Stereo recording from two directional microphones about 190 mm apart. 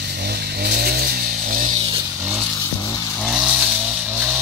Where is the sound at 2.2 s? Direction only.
10° right (ahead or behind).